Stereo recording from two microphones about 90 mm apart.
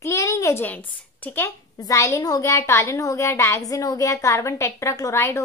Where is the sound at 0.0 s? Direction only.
35° left (ahead or behind).